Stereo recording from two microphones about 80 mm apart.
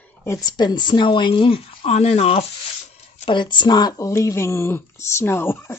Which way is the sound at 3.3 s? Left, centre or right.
Left.